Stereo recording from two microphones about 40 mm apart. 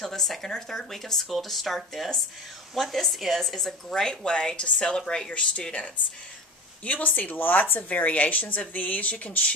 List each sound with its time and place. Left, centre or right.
0.0 s speech: centre
5.3 s speech: left
6.8 s speech: left
7.9 s speech: left